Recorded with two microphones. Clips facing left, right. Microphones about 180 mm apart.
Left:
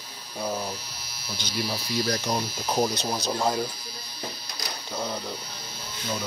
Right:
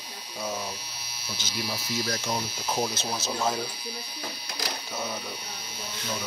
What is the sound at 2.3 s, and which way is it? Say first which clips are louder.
Speech: left 2 dB; 20° left (ahead or behind).